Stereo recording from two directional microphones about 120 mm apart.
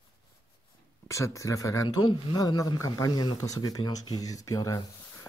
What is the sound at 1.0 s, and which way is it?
Speech, 25° left (ahead or behind).